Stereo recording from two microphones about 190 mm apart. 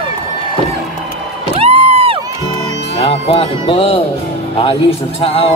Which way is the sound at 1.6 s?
30° right (ahead or behind).